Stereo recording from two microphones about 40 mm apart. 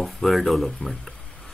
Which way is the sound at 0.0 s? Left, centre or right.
Centre.